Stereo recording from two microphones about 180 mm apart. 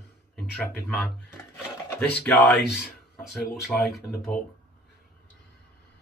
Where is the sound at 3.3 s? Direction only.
Centre (ahead or behind).